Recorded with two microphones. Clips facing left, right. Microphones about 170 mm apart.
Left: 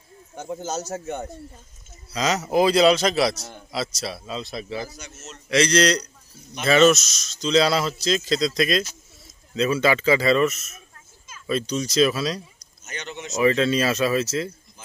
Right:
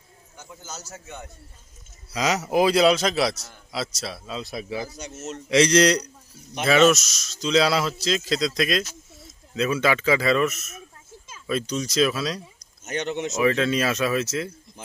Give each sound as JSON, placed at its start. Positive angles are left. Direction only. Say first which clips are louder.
{"t": 0.9, "sound": "speech", "louder": "left 10 dB", "side_deg": 45}
{"t": 2.1, "sound": "a man's voice", "louder": "left 1 dB", "side_deg": -10}
{"t": 6.6, "sound": "speech", "louder": "left 1 dB", "side_deg": -5}
{"t": 12.8, "sound": "speech", "louder": "right 8 dB", "side_deg": -55}
{"t": 13.4, "sound": "speech", "louder": "left 3 dB", "side_deg": 0}